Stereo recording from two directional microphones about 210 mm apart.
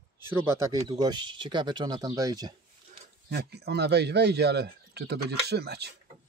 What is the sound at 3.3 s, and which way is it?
Speech, 50° right (ahead or behind).